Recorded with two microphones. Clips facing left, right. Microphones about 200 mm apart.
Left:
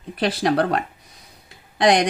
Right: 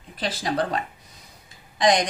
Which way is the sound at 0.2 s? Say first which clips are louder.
Left 6 dB; 65° left (ahead or behind).